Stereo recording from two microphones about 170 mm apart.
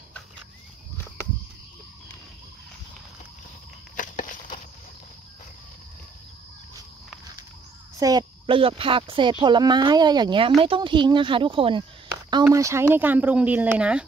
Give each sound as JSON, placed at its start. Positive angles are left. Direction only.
{"t": 3.9, "sound": "a sound", "side_deg": 50}
{"t": 8.0, "sound": "speech", "side_deg": -25}
{"t": 12.4, "sound": "speech", "side_deg": -15}